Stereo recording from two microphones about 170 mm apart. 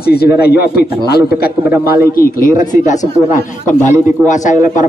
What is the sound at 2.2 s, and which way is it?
A man's voice, 55° left (ahead or behind).